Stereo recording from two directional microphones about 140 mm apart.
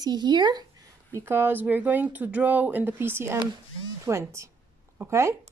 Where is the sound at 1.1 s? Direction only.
15° right (ahead or behind).